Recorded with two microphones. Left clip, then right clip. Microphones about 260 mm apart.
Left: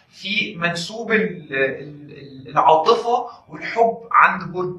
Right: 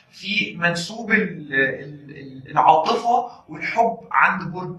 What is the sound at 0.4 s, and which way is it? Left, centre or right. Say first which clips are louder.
Speech: right 1 dB; centre.